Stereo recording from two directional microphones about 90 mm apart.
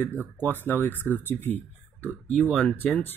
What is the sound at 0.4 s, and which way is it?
Speech, 20° left (ahead or behind).